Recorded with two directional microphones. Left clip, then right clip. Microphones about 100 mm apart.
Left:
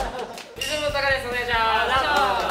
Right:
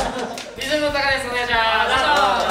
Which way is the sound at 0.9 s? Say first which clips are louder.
Right 3 dB; 25° right (ahead or behind).